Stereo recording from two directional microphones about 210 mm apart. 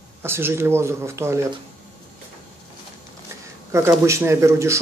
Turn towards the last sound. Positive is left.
turn(degrees=-15)  # may be behind; listen again after turning